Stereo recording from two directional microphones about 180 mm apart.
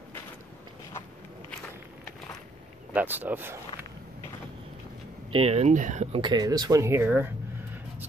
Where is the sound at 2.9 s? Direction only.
10° right (ahead or behind).